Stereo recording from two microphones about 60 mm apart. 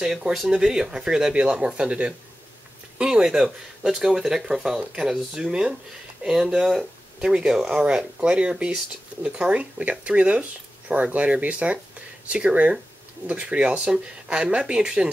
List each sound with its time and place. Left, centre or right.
0.5 s speech: centre